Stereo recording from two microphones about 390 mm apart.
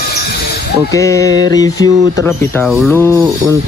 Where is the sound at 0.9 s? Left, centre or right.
Centre.